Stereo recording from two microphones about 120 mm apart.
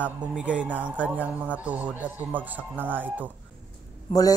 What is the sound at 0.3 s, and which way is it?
A man's voice, 10° right (ahead or behind).